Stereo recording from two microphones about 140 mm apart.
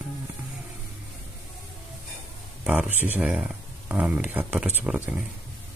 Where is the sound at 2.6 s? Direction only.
10° right (ahead or behind).